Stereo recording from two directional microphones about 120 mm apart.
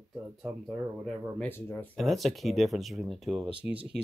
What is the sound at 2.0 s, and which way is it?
Speech, centre (ahead or behind).